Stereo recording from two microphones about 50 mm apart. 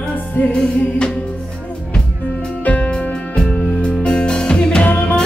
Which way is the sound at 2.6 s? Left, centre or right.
Left.